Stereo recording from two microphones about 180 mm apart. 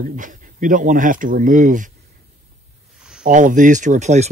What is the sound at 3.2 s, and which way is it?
Speech, 45° right (ahead or behind).